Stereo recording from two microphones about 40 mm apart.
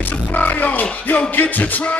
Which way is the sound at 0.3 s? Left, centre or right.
Left.